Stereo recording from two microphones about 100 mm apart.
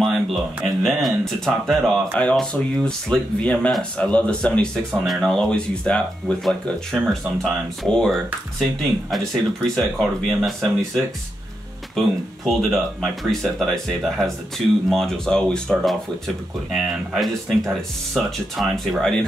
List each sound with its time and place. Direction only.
0.0 s a sound: centre (ahead or behind)
0.8 s speech: centre (ahead or behind)
12.0 s speech: 5° left (ahead or behind)